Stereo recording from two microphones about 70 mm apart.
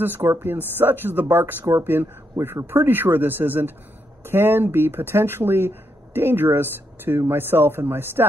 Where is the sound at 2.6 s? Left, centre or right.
Right.